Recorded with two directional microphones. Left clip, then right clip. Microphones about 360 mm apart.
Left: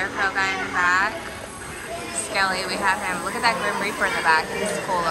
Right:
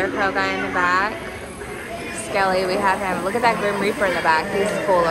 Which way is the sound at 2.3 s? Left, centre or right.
Centre.